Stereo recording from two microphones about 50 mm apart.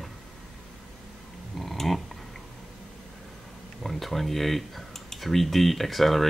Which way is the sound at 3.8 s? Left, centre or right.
Centre.